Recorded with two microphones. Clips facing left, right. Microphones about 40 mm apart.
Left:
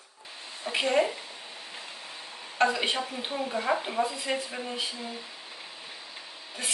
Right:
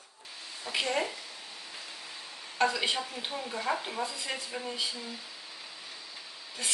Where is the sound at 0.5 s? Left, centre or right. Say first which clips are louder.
Left 6 dB; left.